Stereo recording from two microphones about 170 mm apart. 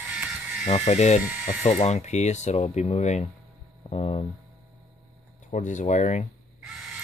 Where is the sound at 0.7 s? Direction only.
40° left (ahead or behind).